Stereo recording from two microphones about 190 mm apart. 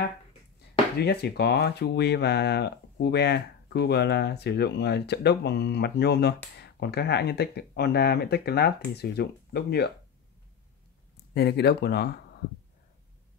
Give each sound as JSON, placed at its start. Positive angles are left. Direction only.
{"t": 0.9, "sound": "speech", "side_deg": 60}
{"t": 11.3, "sound": "speech", "side_deg": 60}